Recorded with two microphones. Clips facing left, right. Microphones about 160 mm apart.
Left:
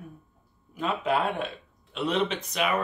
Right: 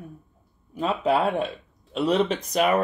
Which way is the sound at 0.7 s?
35° right (ahead or behind).